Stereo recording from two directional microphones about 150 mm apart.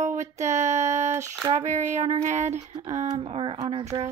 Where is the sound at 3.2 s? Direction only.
35° right (ahead or behind).